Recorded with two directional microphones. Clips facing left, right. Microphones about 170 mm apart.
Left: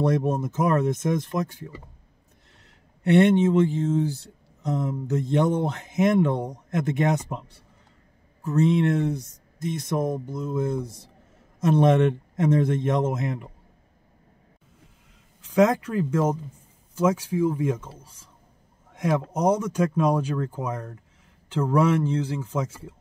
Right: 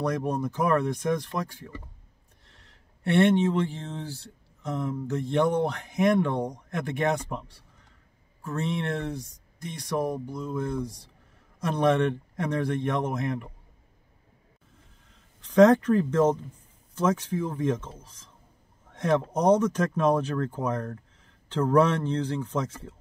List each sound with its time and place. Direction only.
0.0 s speech: 25° left (ahead or behind)
3.0 s speech: 20° left (ahead or behind)
15.4 s speech: 10° left (ahead or behind)